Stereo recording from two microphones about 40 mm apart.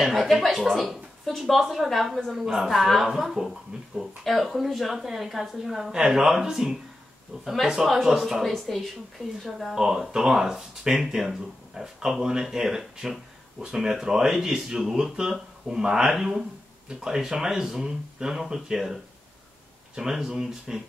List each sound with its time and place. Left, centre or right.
0.0 s speech: centre
1.2 s speech: centre
2.4 s speech: centre
9.8 s speech: centre
20.0 s speech: centre